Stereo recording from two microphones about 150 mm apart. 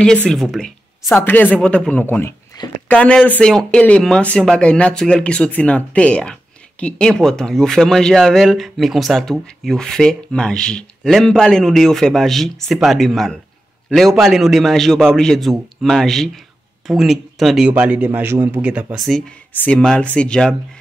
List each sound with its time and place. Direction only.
0.3 s speech: 5° left (ahead or behind)
1.2 s speech: 10° left (ahead or behind); by 18.9 s 10° right (ahead or behind)
18.9 s speech: centre (ahead or behind)